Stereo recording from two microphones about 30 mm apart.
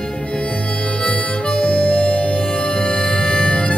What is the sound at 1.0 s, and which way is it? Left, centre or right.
Harmonica, left.